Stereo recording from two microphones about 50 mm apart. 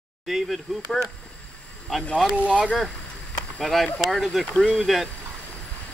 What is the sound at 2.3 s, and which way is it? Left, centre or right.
Speech, right.